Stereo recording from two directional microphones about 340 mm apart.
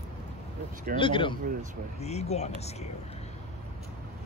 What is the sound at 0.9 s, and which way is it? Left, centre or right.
Speech, centre.